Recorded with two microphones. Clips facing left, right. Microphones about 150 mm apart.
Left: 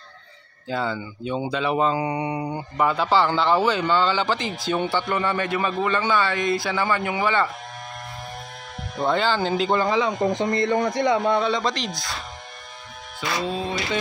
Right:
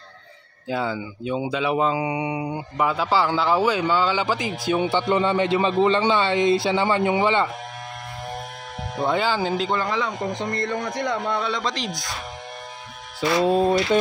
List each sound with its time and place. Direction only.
0.7 s speech: 5° right (ahead or behind)
4.8 s a man's voice: 20° right (ahead or behind)
8.9 s speech: 10° right (ahead or behind)
9.7 s a man's voice: 10° left (ahead or behind)
13.4 s a sound: 55° right (ahead or behind)